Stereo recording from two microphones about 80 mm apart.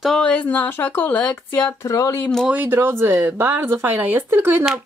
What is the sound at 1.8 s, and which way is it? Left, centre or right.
Speech, left.